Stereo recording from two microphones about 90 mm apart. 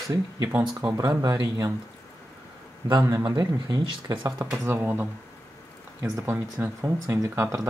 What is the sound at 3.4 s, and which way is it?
Speech, 50° right (ahead or behind).